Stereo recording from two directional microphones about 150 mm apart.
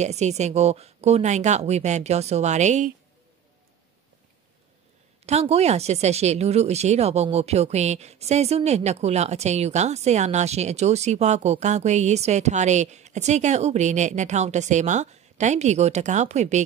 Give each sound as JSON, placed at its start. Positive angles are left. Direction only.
{"t": 0.0, "sound": "speech", "side_deg": -50}
{"t": 5.2, "sound": "speech", "side_deg": -45}